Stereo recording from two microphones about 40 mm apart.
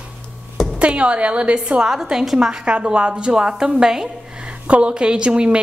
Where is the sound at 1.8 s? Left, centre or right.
Centre.